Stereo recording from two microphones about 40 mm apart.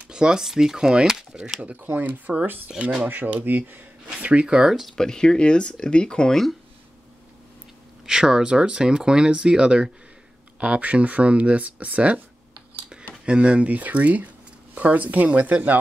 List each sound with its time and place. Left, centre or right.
0.1 s speech: centre
1.8 s speech: right
2.7 s speech: centre
3.1 s speech: right
4.3 s speech: right
4.9 s speech: centre
8.0 s speech: centre
10.6 s speech: right
13.2 s speech: right